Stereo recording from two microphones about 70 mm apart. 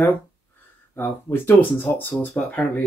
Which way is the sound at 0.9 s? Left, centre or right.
Left.